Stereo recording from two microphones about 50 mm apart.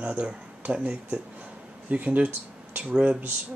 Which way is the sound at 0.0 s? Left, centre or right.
Right.